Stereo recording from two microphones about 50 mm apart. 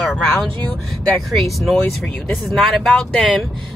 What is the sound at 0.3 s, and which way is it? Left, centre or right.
Speech, centre.